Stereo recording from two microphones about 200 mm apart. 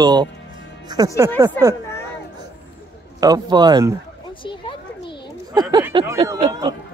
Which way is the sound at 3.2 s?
20° right (ahead or behind).